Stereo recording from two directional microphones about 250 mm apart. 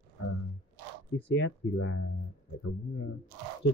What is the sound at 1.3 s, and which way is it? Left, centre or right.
Speech, left.